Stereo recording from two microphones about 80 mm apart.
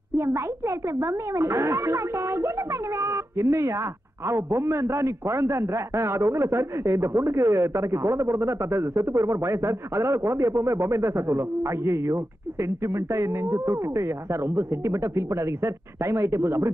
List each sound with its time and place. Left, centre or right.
0.2 s a man's voice: right